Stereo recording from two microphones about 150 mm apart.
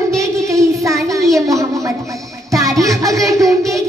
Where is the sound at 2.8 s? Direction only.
20° right (ahead or behind).